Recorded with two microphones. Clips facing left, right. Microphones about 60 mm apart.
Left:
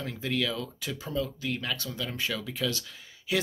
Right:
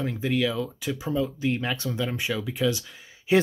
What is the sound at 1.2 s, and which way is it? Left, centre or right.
Speech, right.